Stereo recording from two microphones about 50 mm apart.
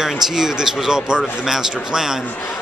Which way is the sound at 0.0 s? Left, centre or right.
Centre.